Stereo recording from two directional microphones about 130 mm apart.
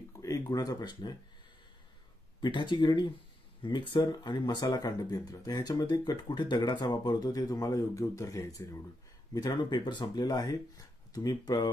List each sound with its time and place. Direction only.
0.2 s speech: 25° left (ahead or behind)
2.4 s speech: 35° left (ahead or behind)